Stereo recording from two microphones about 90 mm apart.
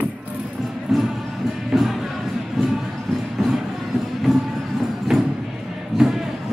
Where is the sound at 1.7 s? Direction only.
Centre (ahead or behind).